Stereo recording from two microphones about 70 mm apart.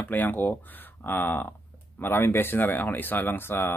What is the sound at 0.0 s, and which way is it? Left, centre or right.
Speech, left.